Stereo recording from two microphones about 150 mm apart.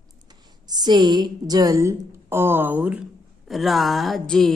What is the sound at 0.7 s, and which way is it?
Speech, 30° right (ahead or behind).